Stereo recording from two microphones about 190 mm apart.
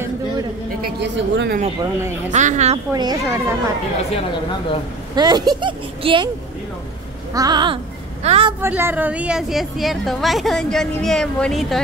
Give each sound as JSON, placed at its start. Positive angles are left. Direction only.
{"t": 0.8, "sound": "a woman's voice", "side_deg": -70}
{"t": 2.3, "sound": "a woman's voice", "side_deg": -40}
{"t": 2.9, "sound": "a child's voice", "side_deg": -20}
{"t": 5.1, "sound": "speech", "side_deg": -20}
{"t": 7.3, "sound": "speech", "side_deg": -20}
{"t": 8.5, "sound": "a woman's voice", "side_deg": -10}